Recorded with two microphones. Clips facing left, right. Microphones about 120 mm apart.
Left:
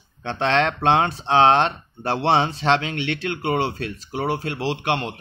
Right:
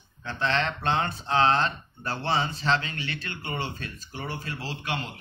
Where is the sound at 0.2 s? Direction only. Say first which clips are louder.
Left 7 dB; 90° left.